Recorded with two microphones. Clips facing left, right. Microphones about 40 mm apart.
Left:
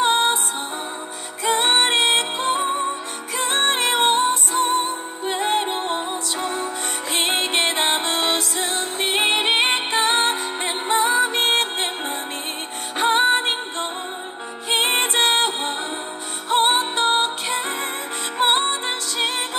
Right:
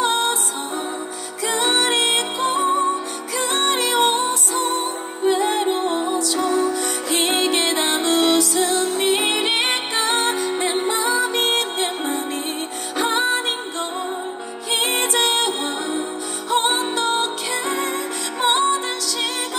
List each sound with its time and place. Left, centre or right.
0.0 s music: left
1.4 s music: left